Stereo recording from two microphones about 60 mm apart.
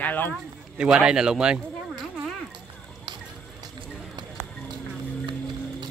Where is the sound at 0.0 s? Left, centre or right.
Left.